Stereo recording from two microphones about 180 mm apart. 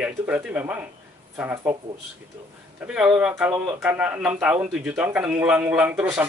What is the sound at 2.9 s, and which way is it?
A woman's voice, 5° right (ahead or behind).